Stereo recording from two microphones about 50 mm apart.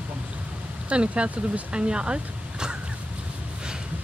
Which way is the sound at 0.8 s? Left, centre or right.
Right.